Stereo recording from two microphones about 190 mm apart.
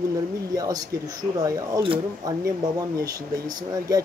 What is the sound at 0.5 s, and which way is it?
Speech, 20° right (ahead or behind).